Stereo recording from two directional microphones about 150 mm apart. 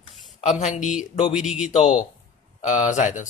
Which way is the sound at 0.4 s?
50° left (ahead or behind).